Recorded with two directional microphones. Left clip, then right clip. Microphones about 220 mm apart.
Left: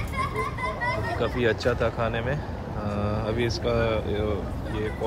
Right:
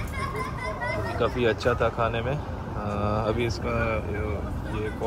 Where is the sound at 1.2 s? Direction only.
10° left (ahead or behind).